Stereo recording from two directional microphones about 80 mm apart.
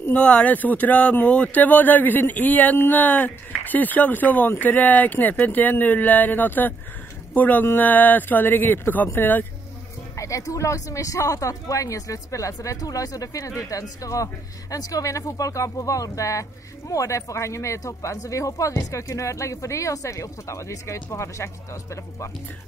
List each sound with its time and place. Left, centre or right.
0.1 s speech: centre
10.1 s speech: left